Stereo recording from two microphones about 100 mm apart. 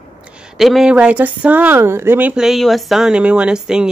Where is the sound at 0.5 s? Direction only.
Centre (ahead or behind); by 2.3 s 20° right (ahead or behind).